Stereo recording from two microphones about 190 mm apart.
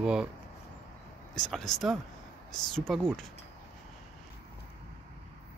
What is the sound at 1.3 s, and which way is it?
Speech, 5° left (ahead or behind).